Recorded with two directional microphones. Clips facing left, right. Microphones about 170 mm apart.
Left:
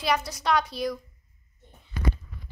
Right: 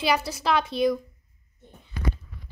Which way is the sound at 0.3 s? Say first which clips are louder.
Right 1 dB; 5° right (ahead or behind).